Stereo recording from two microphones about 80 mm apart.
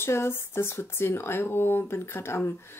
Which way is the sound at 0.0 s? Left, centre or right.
Left.